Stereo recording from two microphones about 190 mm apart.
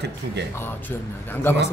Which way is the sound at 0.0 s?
65° right (ahead or behind).